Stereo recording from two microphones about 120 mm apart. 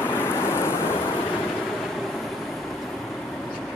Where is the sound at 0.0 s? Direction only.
20° left (ahead or behind).